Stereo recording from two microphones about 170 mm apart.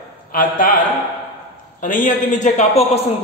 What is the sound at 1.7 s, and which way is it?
Speech, 50° left (ahead or behind).